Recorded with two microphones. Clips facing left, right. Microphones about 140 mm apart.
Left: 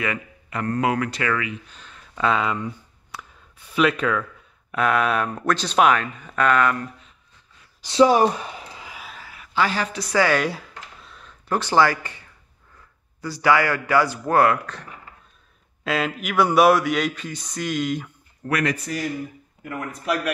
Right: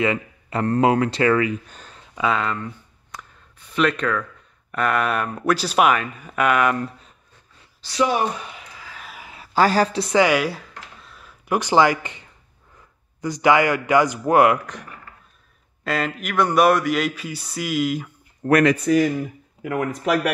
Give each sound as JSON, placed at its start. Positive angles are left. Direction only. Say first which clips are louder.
{"t": 0.0, "sound": "speech", "louder": "right 6 dB", "side_deg": -30}
{"t": 2.1, "sound": "speech", "louder": "even", "side_deg": 0}
{"t": 3.7, "sound": "speech", "louder": "even", "side_deg": 5}
{"t": 7.8, "sound": "speech", "louder": "left 5 dB", "side_deg": 30}
{"t": 9.5, "sound": "speech", "louder": "right 6 dB", "side_deg": -40}
{"t": 10.4, "sound": "a sound", "louder": "even", "side_deg": 0}
{"t": 13.2, "sound": "speech", "louder": "right 2 dB", "side_deg": -20}
{"t": 15.8, "sound": "speech", "louder": "even", "side_deg": 0}
{"t": 18.4, "sound": "speech", "louder": "right 8 dB", "side_deg": -30}
{"t": 19.6, "sound": "speech", "louder": "right 7 dB", "side_deg": -90}